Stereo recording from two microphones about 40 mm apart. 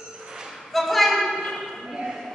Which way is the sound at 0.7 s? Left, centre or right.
Centre.